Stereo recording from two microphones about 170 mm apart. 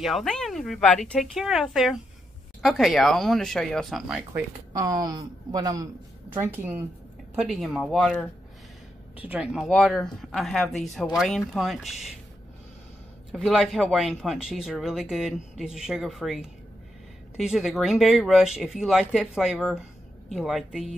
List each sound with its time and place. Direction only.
0.0 s speech: centre (ahead or behind)
4.3 s speech: 20° right (ahead or behind)
7.4 s speech: centre (ahead or behind)
9.1 s speech: 10° right (ahead or behind)
13.3 s speech: centre (ahead or behind)